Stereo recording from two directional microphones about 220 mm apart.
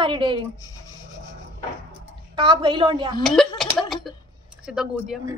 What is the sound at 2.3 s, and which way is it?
Speech, 25° right (ahead or behind).